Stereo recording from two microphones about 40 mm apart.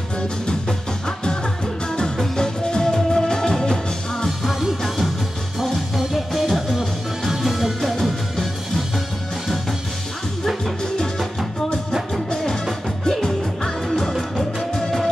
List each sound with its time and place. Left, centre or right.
0.5 s music: centre
4.5 s music: centre
8.0 s music: centre
10.6 s music: centre